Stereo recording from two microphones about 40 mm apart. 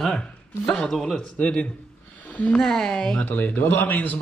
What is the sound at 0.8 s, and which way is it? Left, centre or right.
Speech, centre.